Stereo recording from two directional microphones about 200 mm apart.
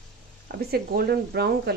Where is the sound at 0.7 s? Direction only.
50° right (ahead or behind).